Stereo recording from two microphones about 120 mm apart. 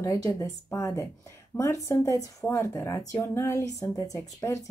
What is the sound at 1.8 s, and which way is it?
Speech, 25° left (ahead or behind).